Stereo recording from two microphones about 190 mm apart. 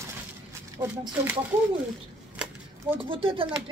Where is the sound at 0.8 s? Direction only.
25° right (ahead or behind).